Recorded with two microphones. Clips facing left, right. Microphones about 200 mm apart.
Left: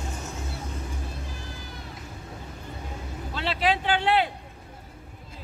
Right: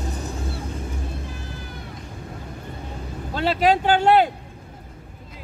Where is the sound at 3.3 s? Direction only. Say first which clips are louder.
Right 7 dB; 45° right (ahead or behind).